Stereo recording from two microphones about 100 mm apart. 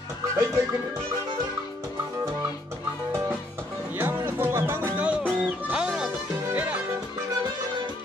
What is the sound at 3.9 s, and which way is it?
Music, 20° right (ahead or behind).